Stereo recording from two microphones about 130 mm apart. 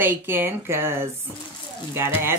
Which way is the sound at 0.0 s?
15° right (ahead or behind).